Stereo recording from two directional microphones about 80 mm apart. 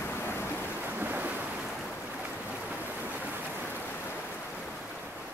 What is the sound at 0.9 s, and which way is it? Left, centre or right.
Ocean, right.